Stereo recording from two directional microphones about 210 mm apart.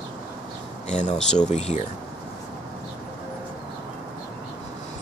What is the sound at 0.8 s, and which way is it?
Speech, 35° left (ahead or behind).